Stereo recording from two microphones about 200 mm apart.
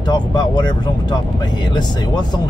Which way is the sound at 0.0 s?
20° left (ahead or behind).